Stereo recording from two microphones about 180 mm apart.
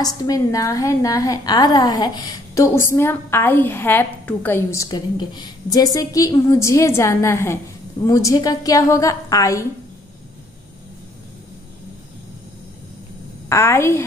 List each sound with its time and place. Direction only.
0.0 s a woman's voice: 20° left (ahead or behind)
13.5 s a woman's voice: 15° left (ahead or behind)